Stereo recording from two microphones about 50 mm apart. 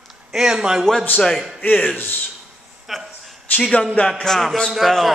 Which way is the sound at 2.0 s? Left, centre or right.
Left.